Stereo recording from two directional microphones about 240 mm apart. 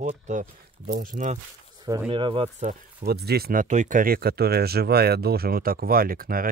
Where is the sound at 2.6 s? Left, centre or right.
Right.